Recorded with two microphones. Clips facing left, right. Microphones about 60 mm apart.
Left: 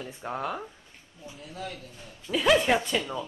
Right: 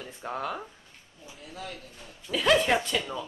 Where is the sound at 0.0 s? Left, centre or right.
Centre.